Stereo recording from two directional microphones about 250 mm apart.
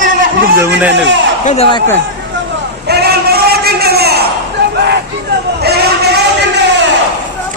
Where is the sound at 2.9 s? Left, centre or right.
Right.